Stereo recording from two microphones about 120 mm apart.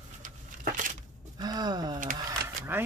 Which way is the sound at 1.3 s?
35° right (ahead or behind).